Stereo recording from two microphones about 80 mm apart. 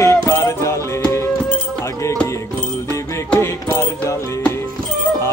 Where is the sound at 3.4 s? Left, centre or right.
Left.